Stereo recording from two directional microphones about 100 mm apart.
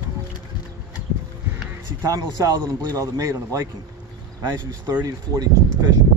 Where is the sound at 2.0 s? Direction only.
35° right (ahead or behind).